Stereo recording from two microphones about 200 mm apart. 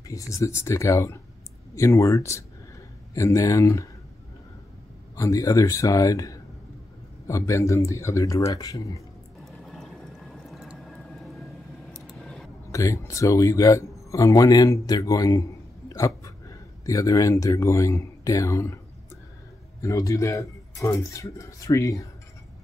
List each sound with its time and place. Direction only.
0.1 s speech: 15° left (ahead or behind)
5.1 s speech: 15° left (ahead or behind)
9.4 s a sound: centre (ahead or behind)
12.7 s speech: 15° left (ahead or behind)
19.8 s speech: 15° left (ahead or behind)